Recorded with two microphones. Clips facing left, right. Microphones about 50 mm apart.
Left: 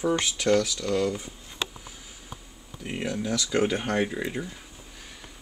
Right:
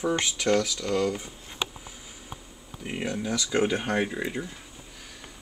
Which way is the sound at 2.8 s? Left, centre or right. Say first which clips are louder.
Even; centre.